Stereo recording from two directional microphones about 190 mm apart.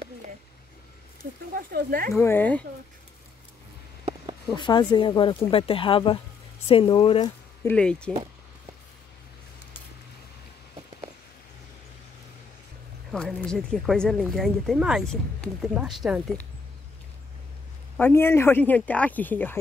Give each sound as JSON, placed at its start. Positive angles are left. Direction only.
{"t": 1.5, "sound": "speech", "side_deg": -50}
{"t": 2.1, "sound": "speech", "side_deg": 10}
{"t": 4.5, "sound": "speech", "side_deg": 25}
{"t": 7.6, "sound": "speech", "side_deg": 5}
{"t": 13.1, "sound": "speech", "side_deg": 5}
{"t": 17.9, "sound": "speech", "side_deg": 10}